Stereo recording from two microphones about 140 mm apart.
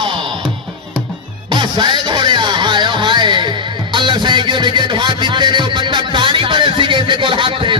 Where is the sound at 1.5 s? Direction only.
35° right (ahead or behind).